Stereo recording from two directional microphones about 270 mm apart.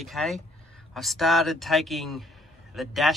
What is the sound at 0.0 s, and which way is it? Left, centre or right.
Speech, centre.